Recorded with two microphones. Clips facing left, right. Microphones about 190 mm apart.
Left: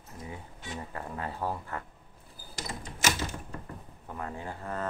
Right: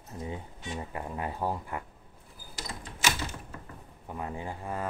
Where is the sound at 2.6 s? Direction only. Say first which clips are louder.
Left 2 dB; 45° left (ahead or behind).